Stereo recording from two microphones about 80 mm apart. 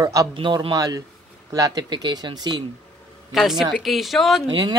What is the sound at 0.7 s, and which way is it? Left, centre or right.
Speech, right.